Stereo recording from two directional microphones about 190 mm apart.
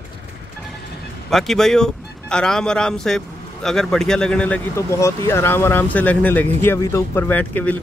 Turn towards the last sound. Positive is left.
turn(degrees=10)  # may be behind; listen again after turning